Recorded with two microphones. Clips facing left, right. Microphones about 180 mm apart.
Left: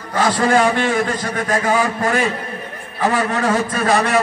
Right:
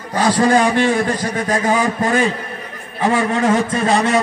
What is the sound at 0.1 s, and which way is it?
A man's voice, 15° right (ahead or behind).